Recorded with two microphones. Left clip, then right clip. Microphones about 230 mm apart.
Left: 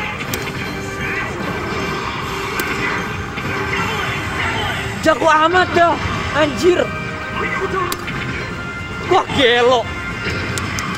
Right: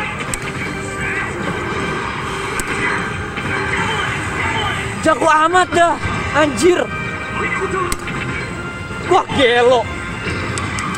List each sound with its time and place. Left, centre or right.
2.5 s vehicle: centre
3.5 s a sound: centre
5.2 s speech: centre
7.3 s music: centre
9.3 s speech: centre